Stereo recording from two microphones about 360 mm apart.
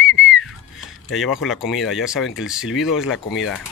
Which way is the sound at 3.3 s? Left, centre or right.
Left.